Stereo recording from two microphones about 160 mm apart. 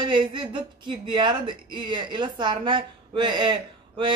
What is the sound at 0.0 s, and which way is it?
Speech, 30° right (ahead or behind).